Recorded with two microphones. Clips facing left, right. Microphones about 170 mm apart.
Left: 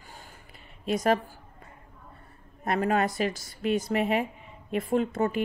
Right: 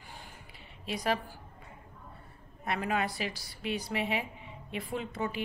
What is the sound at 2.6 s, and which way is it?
Speech, 45° left (ahead or behind).